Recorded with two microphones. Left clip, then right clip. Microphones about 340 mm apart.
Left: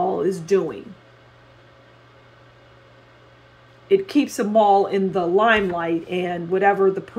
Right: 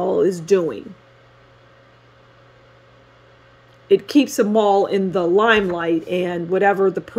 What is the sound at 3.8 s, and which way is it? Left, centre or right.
Speech, right.